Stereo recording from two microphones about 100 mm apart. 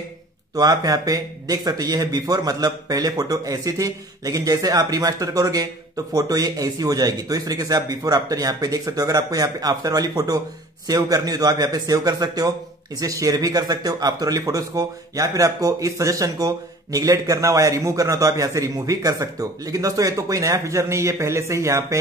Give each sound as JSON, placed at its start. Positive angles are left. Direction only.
{"t": 0.6, "sound": "a man's voice", "side_deg": -40}